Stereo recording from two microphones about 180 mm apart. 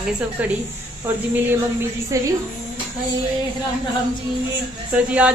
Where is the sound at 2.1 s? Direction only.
20° right (ahead or behind).